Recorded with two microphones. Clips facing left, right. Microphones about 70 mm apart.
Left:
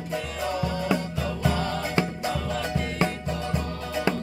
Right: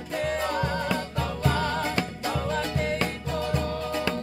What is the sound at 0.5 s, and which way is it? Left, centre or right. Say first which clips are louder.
Music: right 1 dB; right.